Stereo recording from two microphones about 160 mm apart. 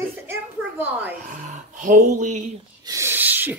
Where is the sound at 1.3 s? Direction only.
55° right (ahead or behind).